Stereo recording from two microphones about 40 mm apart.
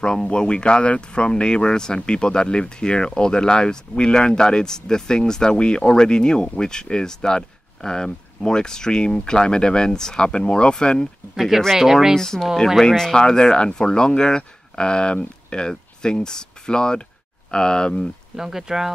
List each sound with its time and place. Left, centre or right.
0.0 s speech: left
11.3 s speech: centre
12.2 s speech: centre
18.3 s speech: centre